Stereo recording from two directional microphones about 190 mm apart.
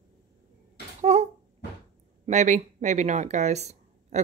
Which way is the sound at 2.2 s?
40° right (ahead or behind).